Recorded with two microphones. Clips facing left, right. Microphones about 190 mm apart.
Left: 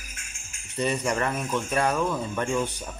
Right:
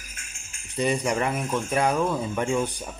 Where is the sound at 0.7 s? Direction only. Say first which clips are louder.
Right 2 dB; 10° right (ahead or behind).